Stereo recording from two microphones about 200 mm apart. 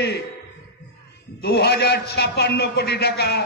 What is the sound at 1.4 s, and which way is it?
A man's voice, 55° left (ahead or behind).